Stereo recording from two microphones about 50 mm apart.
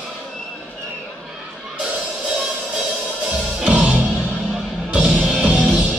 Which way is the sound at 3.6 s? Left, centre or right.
Right.